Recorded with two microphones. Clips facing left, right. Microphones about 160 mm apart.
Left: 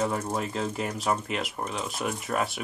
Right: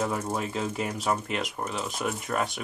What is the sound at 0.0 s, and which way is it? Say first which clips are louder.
Speech: left 1 dB; centre (ahead or behind).